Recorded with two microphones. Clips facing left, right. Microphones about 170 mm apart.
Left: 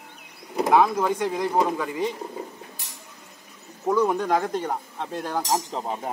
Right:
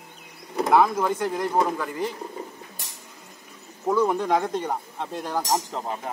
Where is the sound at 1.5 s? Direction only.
10° left (ahead or behind).